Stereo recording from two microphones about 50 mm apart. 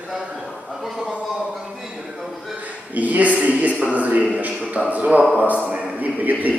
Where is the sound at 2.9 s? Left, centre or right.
Right.